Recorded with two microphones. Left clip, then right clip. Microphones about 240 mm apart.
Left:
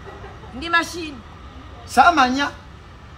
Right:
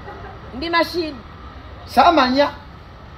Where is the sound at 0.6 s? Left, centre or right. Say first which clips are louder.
Right 2 dB; centre.